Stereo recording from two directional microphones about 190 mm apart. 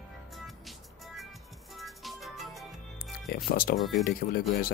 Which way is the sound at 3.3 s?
50° left (ahead or behind).